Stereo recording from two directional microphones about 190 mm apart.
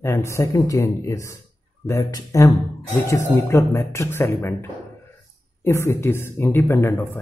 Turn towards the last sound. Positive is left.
turn(degrees=15)  # may be behind; listen again after turning